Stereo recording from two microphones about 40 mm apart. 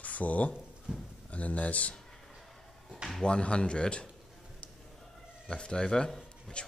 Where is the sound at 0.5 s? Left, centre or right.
Right.